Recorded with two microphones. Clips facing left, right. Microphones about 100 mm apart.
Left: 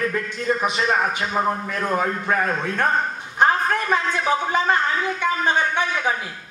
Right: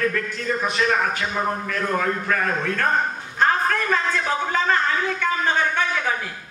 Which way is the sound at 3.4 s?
20° left (ahead or behind).